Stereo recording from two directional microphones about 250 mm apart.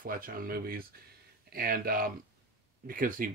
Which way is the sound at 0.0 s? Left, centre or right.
Right.